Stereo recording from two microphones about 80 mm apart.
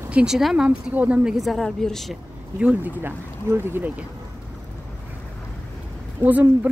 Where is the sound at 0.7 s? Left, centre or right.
Centre.